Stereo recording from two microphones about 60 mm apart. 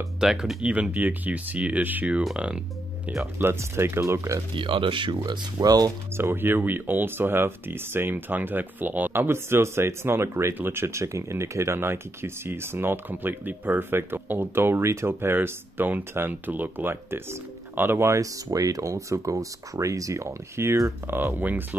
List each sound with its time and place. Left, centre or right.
0.2 s speech: centre
3.5 s speech: right
5.2 s speech: right
6.1 s speech: right
18.2 s speech: right
21.1 s speech: right